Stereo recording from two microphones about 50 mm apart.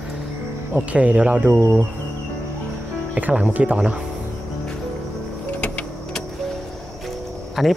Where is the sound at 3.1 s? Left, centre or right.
Right.